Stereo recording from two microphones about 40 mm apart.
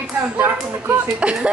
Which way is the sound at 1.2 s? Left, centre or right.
Right.